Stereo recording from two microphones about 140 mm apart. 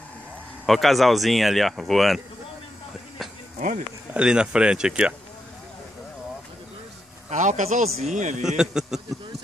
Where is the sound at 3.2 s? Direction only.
Centre (ahead or behind).